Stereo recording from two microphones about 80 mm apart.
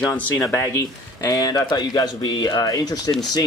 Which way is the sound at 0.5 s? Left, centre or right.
Left.